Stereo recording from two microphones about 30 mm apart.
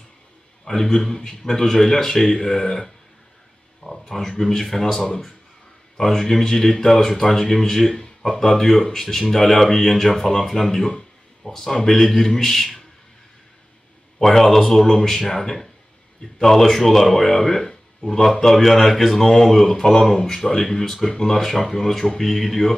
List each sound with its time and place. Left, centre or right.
0.7 s a man's voice: centre
3.8 s a sound: centre
4.1 s a man's voice: centre
14.2 s a man's voice: centre
17.4 s a sound: centre
18.1 s a man's voice: centre
19.7 s a man's voice: left